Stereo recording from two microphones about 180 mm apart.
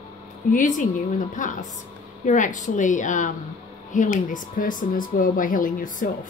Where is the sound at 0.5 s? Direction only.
45° left (ahead or behind).